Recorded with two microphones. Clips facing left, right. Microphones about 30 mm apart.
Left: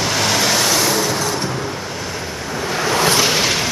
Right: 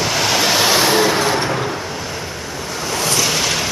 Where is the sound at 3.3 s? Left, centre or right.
Centre.